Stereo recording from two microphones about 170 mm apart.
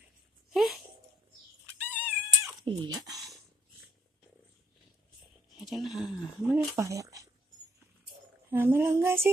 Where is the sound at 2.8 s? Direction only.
25° right (ahead or behind).